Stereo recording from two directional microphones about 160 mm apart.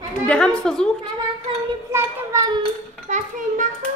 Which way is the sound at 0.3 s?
5° left (ahead or behind).